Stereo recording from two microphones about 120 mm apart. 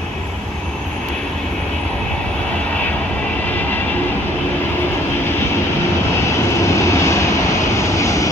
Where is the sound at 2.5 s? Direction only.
10° left (ahead or behind).